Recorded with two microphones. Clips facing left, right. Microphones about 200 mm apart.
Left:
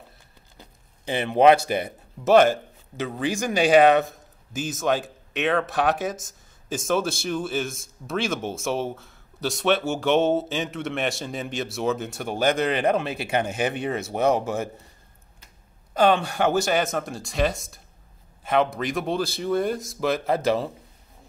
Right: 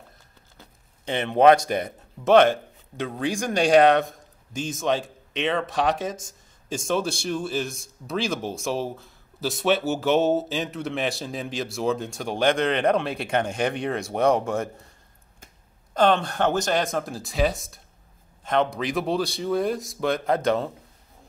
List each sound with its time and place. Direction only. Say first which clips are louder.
0.6 s speech: left 2 dB; 5° left (ahead or behind)
15.9 s speech: left 1 dB; 10° left (ahead or behind)